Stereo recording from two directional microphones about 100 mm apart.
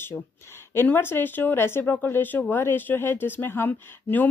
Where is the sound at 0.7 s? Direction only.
25° left (ahead or behind).